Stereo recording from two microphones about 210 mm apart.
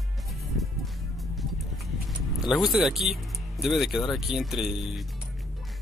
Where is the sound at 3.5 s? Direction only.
Centre (ahead or behind).